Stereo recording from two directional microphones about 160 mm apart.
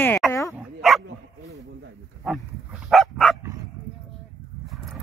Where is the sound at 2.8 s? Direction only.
Centre (ahead or behind).